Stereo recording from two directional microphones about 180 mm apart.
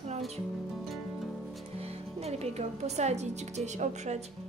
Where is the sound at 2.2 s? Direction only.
35° right (ahead or behind).